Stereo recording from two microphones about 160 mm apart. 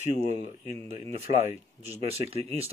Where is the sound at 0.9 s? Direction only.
40° right (ahead or behind).